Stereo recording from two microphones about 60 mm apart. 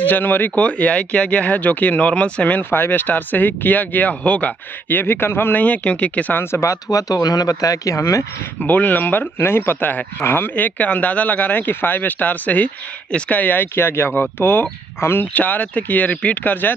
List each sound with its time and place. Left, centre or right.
0.0 s speech: left
0.6 s speech: left
6.4 s speech: left
6.7 s speech: left
8.5 s speech: left
15.3 s speech: left